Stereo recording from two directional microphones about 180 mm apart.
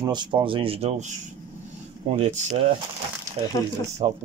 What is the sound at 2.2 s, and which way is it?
Speech, 40° right (ahead or behind).